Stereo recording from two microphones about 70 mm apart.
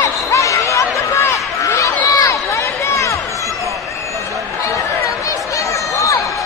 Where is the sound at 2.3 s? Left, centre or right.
Left.